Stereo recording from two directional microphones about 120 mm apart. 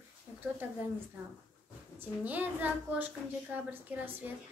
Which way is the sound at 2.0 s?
15° right (ahead or behind).